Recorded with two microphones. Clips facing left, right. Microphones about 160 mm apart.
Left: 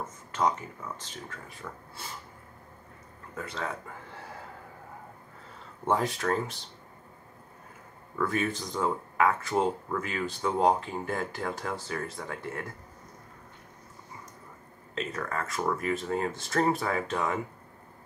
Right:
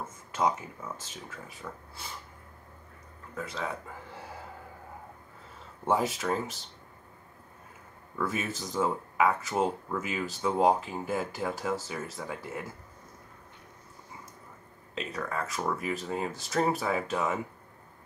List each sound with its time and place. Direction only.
0.3 s speech: 10° right (ahead or behind)
3.3 s speech: centre (ahead or behind)
5.9 s speech: 5° right (ahead or behind)
8.2 s speech: 5° right (ahead or behind)
15.0 s speech: centre (ahead or behind)